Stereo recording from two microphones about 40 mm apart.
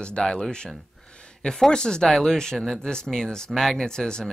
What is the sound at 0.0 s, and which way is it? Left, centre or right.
Speech, left.